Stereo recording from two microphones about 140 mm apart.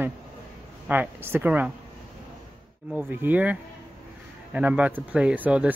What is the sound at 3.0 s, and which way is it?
Speech, 15° right (ahead or behind).